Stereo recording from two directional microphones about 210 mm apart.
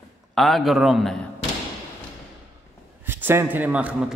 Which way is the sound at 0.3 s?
Centre (ahead or behind).